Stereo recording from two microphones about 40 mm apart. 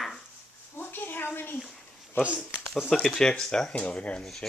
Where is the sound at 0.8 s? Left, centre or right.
Left.